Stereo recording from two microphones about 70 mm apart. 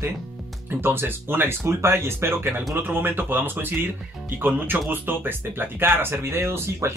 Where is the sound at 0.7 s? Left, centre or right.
Right.